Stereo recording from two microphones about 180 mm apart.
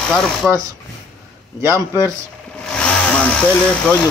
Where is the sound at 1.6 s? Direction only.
15° right (ahead or behind).